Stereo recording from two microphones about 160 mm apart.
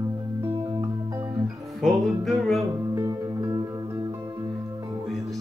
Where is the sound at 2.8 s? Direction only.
20° right (ahead or behind).